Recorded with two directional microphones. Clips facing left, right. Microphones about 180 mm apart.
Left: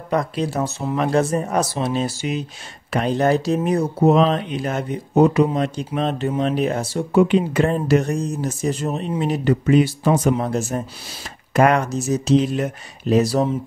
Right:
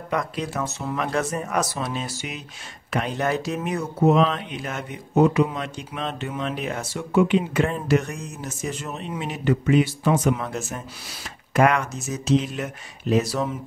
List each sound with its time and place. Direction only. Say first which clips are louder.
0.1 s speech: left 5 dB; 30° left (ahead or behind)